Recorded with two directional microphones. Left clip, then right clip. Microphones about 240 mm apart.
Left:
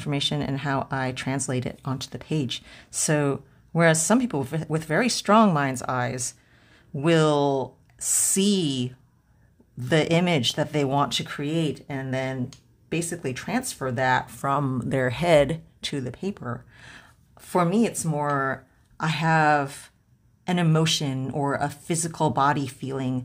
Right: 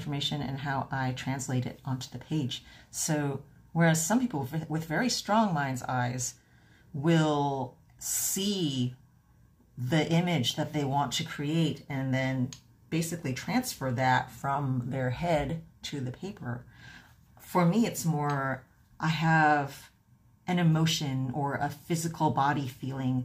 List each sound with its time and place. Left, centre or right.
0.0 s speech: left
9.8 s speech: left